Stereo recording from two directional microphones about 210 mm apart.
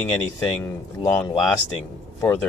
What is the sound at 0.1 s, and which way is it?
Speech, 5° left (ahead or behind).